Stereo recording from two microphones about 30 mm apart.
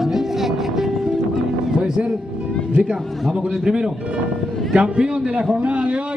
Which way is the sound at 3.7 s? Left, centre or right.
Right.